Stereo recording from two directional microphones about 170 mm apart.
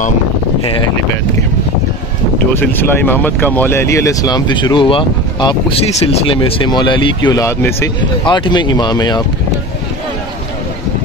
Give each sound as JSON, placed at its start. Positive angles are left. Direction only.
{"t": 2.5, "sound": "speech", "side_deg": 10}
{"t": 8.2, "sound": "speech", "side_deg": 25}